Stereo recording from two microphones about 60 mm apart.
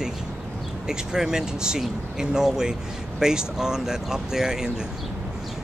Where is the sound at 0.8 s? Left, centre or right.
Centre.